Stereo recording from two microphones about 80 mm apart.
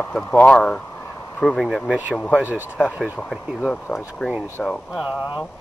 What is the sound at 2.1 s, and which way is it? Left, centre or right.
Speech, centre.